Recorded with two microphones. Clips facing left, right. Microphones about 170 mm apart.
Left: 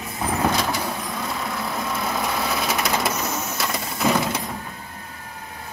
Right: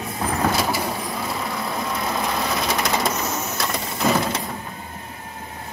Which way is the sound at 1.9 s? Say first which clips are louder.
Even; centre (ahead or behind).